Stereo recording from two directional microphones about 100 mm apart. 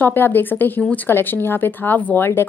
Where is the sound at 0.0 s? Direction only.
20° left (ahead or behind).